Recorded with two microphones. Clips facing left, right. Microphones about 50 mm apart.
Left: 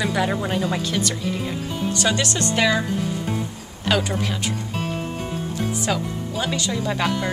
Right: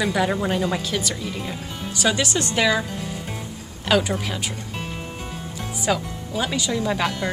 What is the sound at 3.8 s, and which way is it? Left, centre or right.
Speech, centre.